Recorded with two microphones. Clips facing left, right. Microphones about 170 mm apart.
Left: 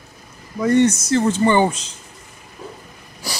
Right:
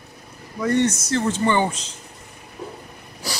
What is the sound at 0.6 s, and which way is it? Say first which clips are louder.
Speech: left 5 dB; 10° left (ahead or behind).